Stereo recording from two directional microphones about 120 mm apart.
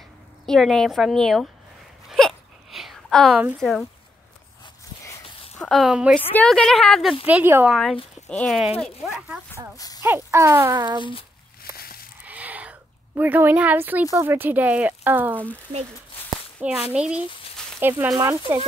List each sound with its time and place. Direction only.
0.5 s a woman's voice: 5° left (ahead or behind)
2.0 s a sound: centre (ahead or behind)
3.5 s a woman's voice: 5° left (ahead or behind)
5.6 s speech: centre (ahead or behind)
6.3 s a woman's voice: 5° left (ahead or behind)
7.2 s speech: 15° right (ahead or behind)
7.7 s a woman's voice: 5° left (ahead or behind)
9.8 s speech: 30° left (ahead or behind)
10.0 s speech: 20° right (ahead or behind)
10.7 s speech: 35° right (ahead or behind)
11.0 s speech: 45° left (ahead or behind)
12.3 s a sound: 15° right (ahead or behind)
13.2 s speech: 15° right (ahead or behind)
16.6 s speech: 10° right (ahead or behind)